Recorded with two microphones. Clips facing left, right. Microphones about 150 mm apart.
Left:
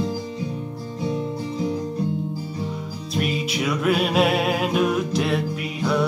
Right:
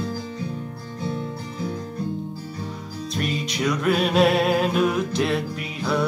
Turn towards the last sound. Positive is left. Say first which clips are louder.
# left 2 dB
turn(degrees=0)  # may be behind; listen again after turning